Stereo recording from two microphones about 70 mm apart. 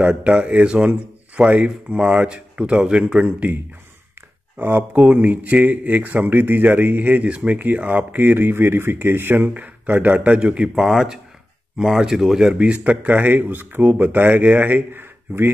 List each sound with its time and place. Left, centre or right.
0.0 s speech: centre
4.6 s speech: right
10.7 s speech: centre; by 15.5 s right